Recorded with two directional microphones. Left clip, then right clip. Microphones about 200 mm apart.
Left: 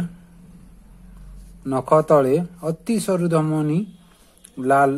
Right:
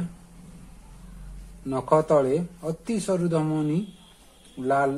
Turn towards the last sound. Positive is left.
turn(degrees=15)  # may be behind; listen again after turning